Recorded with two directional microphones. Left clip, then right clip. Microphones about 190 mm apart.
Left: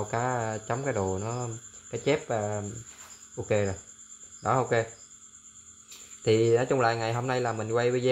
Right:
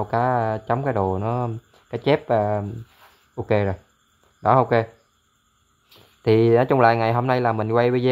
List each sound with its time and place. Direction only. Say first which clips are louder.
0.1 s speech: right 10 dB; 25° right (ahead or behind)
6.2 s speech: right 6 dB; 30° right (ahead or behind)